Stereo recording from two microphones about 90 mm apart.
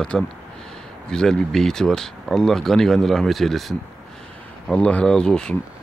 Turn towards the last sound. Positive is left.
turn(degrees=10)  # may be behind; listen again after turning